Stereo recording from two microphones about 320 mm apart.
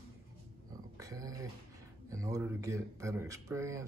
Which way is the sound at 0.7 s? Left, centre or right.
Centre.